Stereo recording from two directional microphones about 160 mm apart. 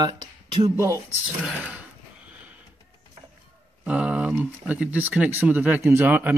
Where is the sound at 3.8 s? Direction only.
5° right (ahead or behind).